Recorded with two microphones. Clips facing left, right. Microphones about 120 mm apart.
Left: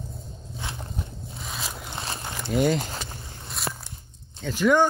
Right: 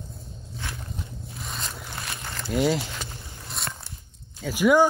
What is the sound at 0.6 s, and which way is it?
Walk, 15° left (ahead or behind).